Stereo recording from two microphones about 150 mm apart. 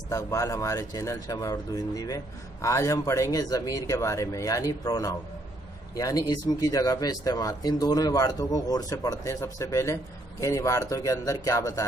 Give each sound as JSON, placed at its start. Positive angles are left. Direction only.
{"t": 0.1, "sound": "speech", "side_deg": 20}